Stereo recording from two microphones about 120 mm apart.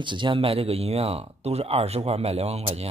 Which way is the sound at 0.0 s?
40° right (ahead or behind).